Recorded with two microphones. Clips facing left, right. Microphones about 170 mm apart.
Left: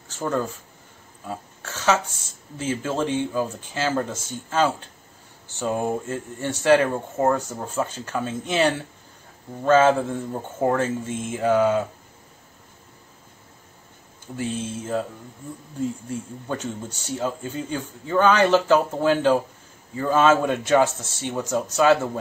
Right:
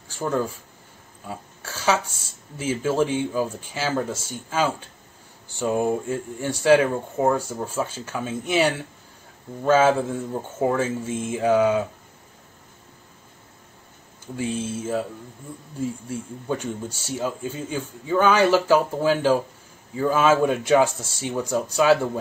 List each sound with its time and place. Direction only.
1.6 s a sound: 10° right (ahead or behind)
2.5 s speech: 10° right (ahead or behind)
14.3 s speech: 10° right (ahead or behind)
16.1 s speech: 10° right (ahead or behind)